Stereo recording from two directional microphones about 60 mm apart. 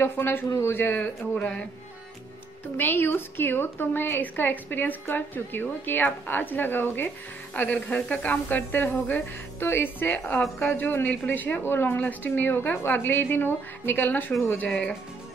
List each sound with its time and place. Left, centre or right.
0.0 s a woman's voice: left
1.3 s speech: left
2.8 s a woman's voice: left
14.7 s speech: centre